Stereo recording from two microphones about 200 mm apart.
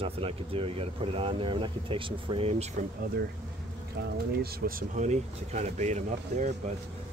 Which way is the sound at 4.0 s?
55° right (ahead or behind).